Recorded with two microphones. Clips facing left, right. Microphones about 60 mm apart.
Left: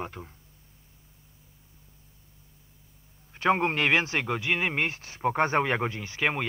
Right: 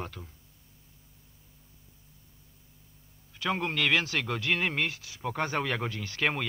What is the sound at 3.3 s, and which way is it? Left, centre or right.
Speech, left.